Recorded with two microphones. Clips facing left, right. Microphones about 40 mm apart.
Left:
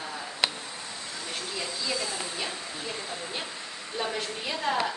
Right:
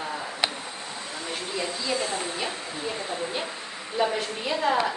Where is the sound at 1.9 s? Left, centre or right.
Right.